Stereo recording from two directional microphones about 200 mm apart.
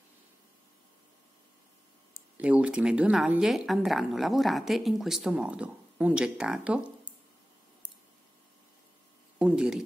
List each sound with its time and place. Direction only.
2.3 s a woman's voice: 5° right (ahead or behind)
9.4 s a woman's voice: 5° right (ahead or behind)